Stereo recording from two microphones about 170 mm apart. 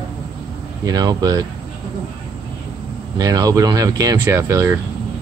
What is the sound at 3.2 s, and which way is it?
Speech, 20° right (ahead or behind).